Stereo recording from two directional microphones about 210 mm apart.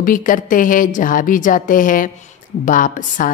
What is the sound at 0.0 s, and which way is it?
Speech, 40° left (ahead or behind).